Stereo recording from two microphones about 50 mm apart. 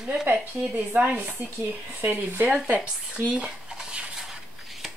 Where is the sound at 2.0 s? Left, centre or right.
Right.